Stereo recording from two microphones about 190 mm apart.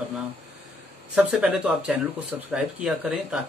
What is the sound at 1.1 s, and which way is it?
Speech, 5° right (ahead or behind).